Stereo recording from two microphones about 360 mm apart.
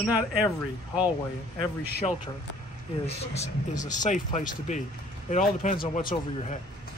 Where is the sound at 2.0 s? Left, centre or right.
Centre.